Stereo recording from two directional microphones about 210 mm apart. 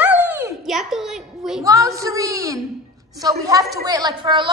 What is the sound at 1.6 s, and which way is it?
A woman's voice, 15° right (ahead or behind).